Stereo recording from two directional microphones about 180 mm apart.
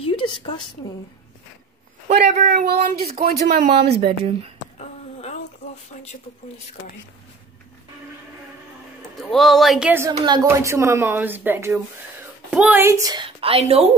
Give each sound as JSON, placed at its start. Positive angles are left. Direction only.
{"t": 0.0, "sound": "a woman's voice", "side_deg": 30}
{"t": 2.0, "sound": "a man's voice", "side_deg": -45}
{"t": 3.2, "sound": "speech", "side_deg": -60}
{"t": 4.2, "sound": "speech", "side_deg": -35}
{"t": 4.7, "sound": "a sound", "side_deg": 35}
{"t": 9.2, "sound": "a woman's voice", "side_deg": 0}